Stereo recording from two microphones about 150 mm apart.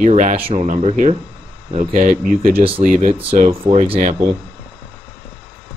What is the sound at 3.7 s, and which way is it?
Speech, 45° right (ahead or behind).